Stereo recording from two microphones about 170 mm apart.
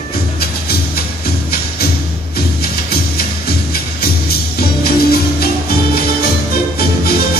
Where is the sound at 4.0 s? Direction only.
65° left (ahead or behind).